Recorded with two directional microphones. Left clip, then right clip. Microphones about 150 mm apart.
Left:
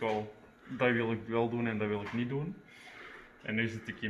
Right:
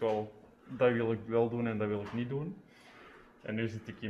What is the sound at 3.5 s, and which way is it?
Speech, 20° right (ahead or behind).